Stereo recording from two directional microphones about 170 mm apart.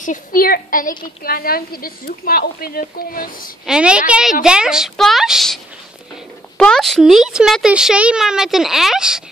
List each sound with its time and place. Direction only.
0.0 s a woman's voice: 50° left (ahead or behind)
3.6 s a woman's voice: 5° right (ahead or behind)
6.6 s a woman's voice: 5° left (ahead or behind)